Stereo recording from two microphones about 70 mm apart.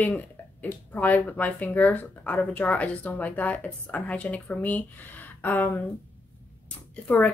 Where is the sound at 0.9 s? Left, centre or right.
Left.